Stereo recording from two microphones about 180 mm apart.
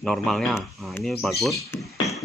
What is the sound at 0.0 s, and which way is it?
Speech, centre (ahead or behind).